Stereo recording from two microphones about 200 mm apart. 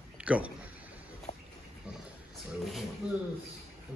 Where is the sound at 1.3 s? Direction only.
30° left (ahead or behind).